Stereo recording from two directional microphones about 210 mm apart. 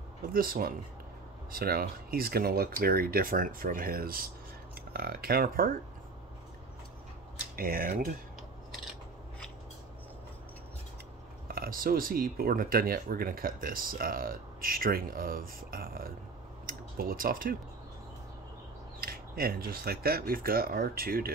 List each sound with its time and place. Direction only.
0.3 s speech: 45° right (ahead or behind)
7.5 s speech: 45° right (ahead or behind)
11.4 s speech: 45° right (ahead or behind)
18.9 s speech: 45° right (ahead or behind)